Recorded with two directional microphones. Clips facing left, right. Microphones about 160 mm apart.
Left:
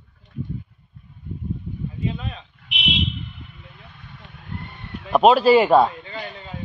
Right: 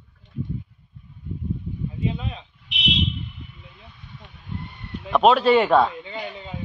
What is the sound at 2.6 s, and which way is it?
Vehicle, 60° left (ahead or behind).